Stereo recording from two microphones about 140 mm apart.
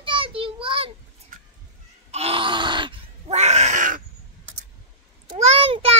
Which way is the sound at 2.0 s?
45° right (ahead or behind).